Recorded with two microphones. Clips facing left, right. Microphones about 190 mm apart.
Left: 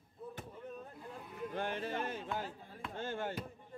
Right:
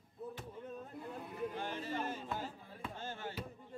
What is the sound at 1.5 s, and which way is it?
Speech, 60° left (ahead or behind).